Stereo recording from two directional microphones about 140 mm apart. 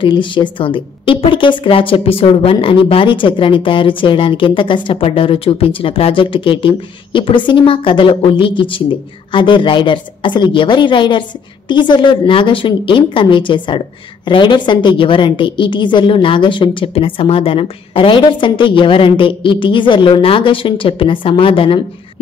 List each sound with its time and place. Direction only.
0.0 s a woman's voice: 35° left (ahead or behind)